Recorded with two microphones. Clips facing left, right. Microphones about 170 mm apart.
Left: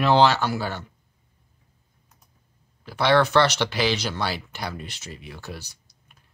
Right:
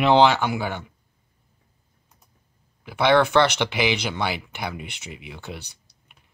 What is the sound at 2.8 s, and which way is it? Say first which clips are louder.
Speech: right 1 dB; 15° right (ahead or behind).